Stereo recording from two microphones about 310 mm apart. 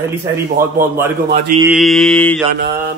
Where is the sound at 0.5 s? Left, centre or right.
Right.